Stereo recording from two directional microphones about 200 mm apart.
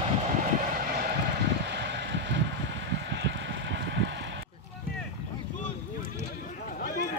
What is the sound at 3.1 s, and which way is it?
Horse, 65° right (ahead or behind).